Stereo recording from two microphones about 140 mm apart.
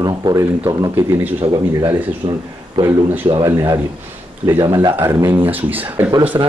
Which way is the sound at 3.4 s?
25° right (ahead or behind).